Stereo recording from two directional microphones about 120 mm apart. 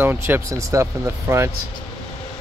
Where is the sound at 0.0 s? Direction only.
15° right (ahead or behind).